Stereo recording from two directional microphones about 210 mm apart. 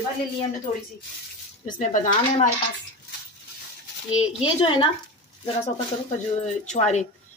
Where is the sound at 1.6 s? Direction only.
40° left (ahead or behind).